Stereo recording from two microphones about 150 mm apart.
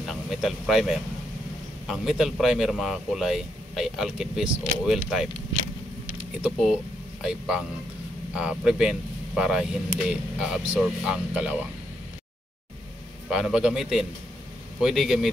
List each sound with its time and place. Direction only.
0.0 s a sound: centre (ahead or behind)
1.9 s speech: centre (ahead or behind)
13.3 s speech: 5° right (ahead or behind)